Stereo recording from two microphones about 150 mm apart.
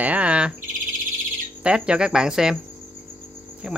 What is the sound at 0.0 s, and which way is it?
Bird, 10° right (ahead or behind).